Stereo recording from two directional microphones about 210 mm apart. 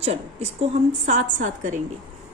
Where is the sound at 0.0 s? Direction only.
30° right (ahead or behind).